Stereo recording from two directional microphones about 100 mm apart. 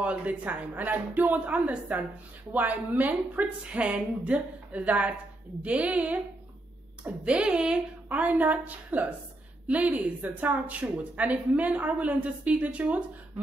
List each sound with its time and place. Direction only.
0.0 s a woman's voice: 15° right (ahead or behind)